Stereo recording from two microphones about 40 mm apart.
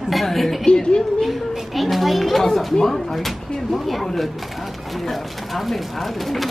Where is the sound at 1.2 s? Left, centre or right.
Centre.